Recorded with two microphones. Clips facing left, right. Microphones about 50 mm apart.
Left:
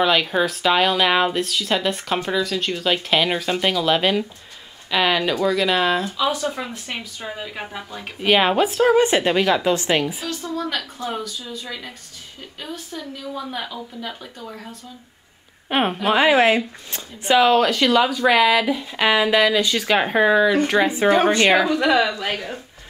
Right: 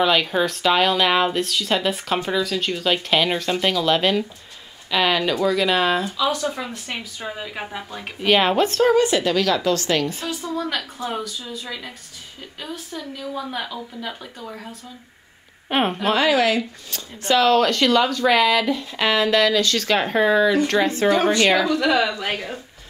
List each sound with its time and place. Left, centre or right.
0.0 s speech: centre
8.2 s speech: centre
8.9 s a woman's voice: left
10.2 s speech: centre
16.2 s a woman's voice: left
17.2 s speech: centre
21.1 s a woman's voice: left
22.1 s speech: centre